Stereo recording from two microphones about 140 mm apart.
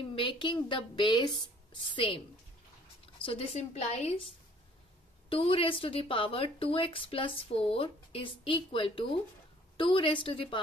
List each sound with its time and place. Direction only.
0.1 s speech: 40° left (ahead or behind)
5.3 s speech: 40° left (ahead or behind)